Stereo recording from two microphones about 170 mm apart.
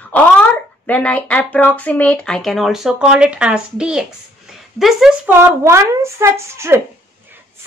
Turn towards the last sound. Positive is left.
turn(degrees=-15)  # may be behind; listen again after turning